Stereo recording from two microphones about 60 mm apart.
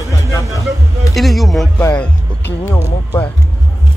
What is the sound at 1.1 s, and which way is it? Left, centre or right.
Speech, centre.